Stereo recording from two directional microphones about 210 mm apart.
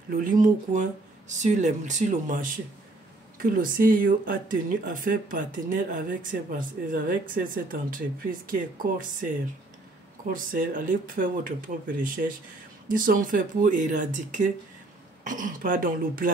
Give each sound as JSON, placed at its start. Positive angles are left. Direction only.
{"t": 0.1, "sound": "speech", "side_deg": -40}